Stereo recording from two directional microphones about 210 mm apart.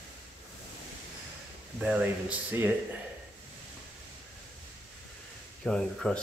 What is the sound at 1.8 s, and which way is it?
Speech, 5° right (ahead or behind).